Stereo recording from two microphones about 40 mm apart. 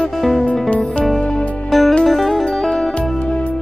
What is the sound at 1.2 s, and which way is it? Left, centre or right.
Music, centre.